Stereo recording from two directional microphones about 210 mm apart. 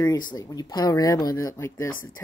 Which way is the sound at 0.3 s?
20° left (ahead or behind).